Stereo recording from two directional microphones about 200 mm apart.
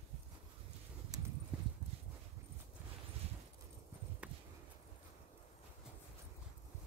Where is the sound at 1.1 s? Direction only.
20° right (ahead or behind).